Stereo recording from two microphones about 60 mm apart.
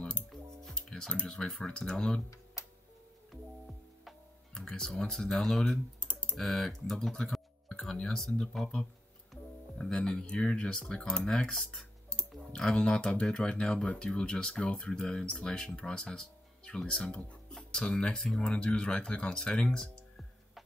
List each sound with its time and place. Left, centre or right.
0.3 s speech: centre
3.3 s music: centre
4.6 s speech: centre
5.9 s typing: centre
6.3 s speech: centre